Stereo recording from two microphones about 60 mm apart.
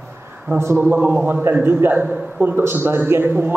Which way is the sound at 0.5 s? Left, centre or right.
Right.